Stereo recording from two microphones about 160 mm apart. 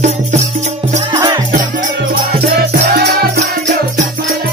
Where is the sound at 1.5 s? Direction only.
65° right (ahead or behind); by 3.3 s 85° right.